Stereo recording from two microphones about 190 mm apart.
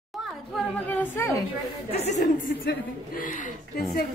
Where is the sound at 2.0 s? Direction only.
40° left (ahead or behind).